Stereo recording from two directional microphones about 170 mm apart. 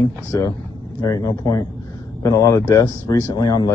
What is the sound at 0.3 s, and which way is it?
Speech, 20° left (ahead or behind).